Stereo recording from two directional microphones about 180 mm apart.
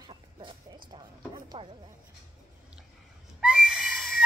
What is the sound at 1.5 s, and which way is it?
Speech, 30° right (ahead or behind).